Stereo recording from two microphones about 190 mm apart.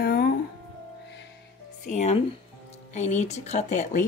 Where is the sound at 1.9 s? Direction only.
35° left (ahead or behind).